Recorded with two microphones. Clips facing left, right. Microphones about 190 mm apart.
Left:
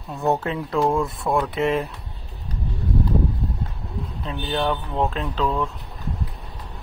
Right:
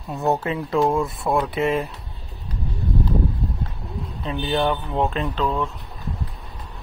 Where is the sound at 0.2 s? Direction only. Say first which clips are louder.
Even; 5° right (ahead or behind).